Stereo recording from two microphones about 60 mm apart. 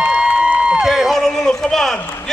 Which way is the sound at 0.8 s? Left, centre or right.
Centre.